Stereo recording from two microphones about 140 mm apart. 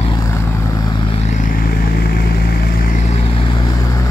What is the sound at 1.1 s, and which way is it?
Vehicle, 60° left (ahead or behind).